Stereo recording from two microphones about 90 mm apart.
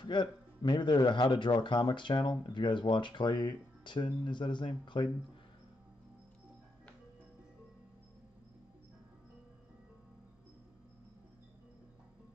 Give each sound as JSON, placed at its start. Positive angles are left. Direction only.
{"t": 0.0, "sound": "a man's voice", "side_deg": 60}